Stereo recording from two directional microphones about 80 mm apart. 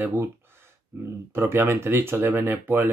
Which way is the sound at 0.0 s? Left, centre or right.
Right.